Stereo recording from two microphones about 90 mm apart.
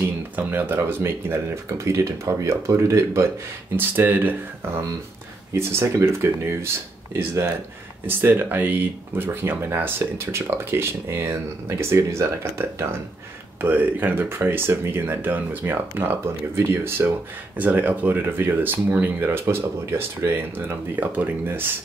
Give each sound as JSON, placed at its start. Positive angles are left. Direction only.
{"t": 0.4, "sound": "speech", "side_deg": -20}